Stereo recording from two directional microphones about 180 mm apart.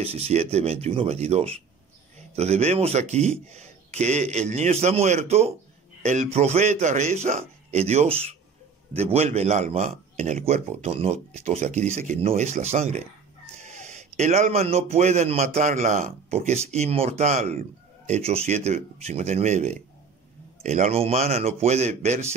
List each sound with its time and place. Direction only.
0.0 s speech: 35° right (ahead or behind)